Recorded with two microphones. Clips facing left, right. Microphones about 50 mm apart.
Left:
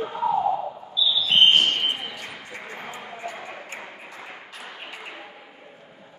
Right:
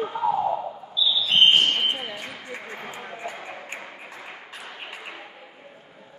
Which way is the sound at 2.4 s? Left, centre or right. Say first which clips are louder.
Right 1 dB; right.